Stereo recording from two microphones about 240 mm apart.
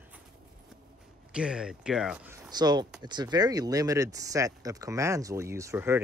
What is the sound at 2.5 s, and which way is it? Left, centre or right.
Speech, centre.